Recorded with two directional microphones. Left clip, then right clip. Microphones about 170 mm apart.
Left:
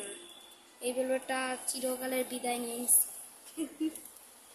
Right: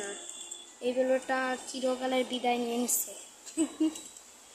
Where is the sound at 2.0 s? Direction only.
25° right (ahead or behind).